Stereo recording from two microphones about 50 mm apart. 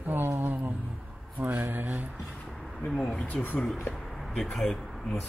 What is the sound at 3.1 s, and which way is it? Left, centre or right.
Speech, left.